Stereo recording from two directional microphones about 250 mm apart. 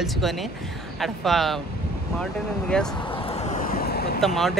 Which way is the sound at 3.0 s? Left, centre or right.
Left.